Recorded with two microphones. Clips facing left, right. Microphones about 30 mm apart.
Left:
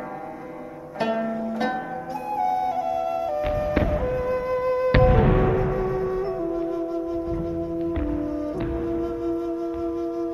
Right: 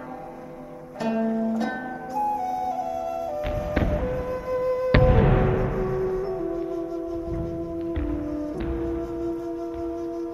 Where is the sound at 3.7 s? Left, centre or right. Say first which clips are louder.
Left 2 dB; centre.